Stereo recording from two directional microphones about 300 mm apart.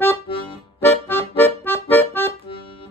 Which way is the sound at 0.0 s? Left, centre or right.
Centre.